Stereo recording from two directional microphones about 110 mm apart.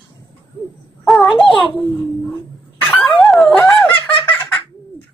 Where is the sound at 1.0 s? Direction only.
Centre (ahead or behind).